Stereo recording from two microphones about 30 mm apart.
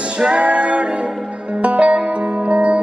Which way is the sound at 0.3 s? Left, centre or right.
Right.